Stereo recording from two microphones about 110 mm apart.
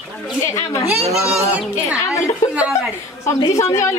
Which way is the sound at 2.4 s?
30° left (ahead or behind).